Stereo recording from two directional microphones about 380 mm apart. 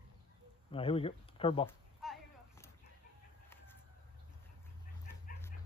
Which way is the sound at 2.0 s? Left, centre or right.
Centre.